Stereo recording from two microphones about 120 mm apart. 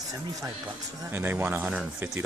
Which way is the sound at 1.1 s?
15° right (ahead or behind).